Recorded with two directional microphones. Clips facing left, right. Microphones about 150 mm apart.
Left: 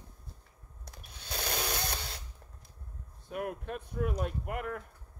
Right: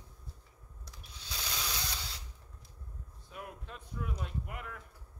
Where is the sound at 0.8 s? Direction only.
55° left (ahead or behind).